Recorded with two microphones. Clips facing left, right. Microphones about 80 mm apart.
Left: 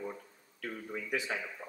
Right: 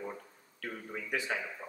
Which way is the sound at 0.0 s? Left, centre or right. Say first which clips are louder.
Even; centre.